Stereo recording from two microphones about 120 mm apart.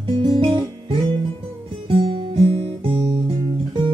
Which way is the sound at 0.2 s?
50° right (ahead or behind).